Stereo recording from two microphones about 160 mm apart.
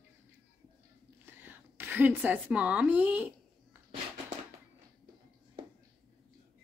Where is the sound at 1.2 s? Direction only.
15° right (ahead or behind).